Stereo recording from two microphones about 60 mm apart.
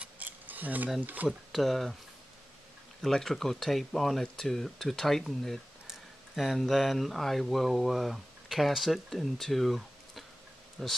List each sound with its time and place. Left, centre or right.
0.2 s a sound: right
1.0 s speech: right
1.5 s speech: centre
3.0 s speech: centre